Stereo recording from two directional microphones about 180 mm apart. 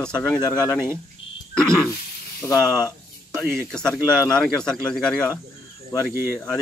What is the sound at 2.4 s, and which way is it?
Speech, 20° left (ahead or behind).